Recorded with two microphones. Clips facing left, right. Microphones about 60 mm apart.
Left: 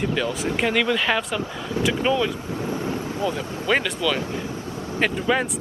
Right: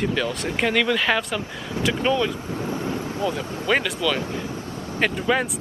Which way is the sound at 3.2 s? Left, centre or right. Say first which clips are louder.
Even; centre.